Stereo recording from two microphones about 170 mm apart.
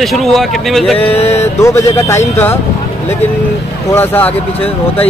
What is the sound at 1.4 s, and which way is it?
Speech, 15° left (ahead or behind).